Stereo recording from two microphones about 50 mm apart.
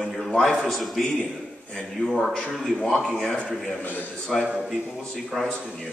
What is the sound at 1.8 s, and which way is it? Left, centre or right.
Speech, centre.